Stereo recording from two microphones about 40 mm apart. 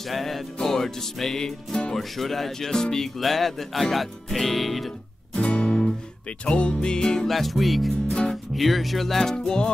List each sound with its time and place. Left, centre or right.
0.0 s music: centre
2.0 s music: centre
5.3 s music: left
7.2 s music: centre